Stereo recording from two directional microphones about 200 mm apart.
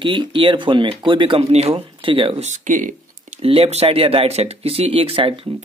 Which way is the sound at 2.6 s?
40° right (ahead or behind).